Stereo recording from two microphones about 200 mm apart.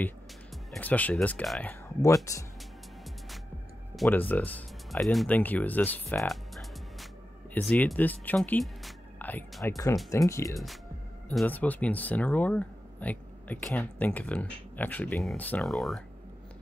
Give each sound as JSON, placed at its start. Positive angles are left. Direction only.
{"t": 0.7, "sound": "speech", "side_deg": 10}
{"t": 3.9, "sound": "speech", "side_deg": 5}